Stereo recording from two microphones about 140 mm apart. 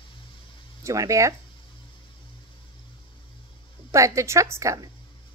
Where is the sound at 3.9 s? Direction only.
20° right (ahead or behind).